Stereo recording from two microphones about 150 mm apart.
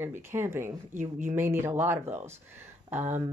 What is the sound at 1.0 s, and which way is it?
Speech, 50° right (ahead or behind).